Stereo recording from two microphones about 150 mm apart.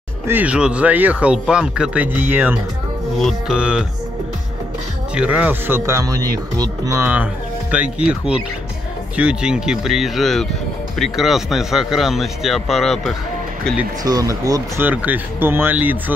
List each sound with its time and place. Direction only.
0.3 s speech: 10° right (ahead or behind)
3.2 s speech: centre (ahead or behind)
5.1 s speech: 10° right (ahead or behind)
14.0 s speech: 25° right (ahead or behind)
14.9 s speech: 10° right (ahead or behind)